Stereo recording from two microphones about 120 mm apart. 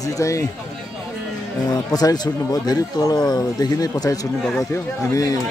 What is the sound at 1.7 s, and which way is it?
A man's voice, 35° left (ahead or behind).